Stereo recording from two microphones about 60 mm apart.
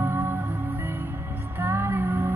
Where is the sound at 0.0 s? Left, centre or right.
Right.